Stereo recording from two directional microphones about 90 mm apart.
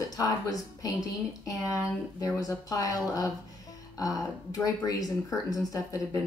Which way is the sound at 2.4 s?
40° left (ahead or behind).